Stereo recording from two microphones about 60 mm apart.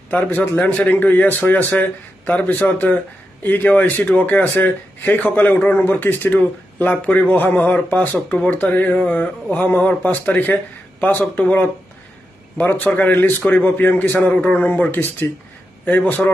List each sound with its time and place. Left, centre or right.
0.1 s a man's voice: left